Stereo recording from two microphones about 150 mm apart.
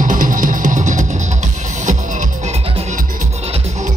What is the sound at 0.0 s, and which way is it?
Music, 60° right (ahead or behind).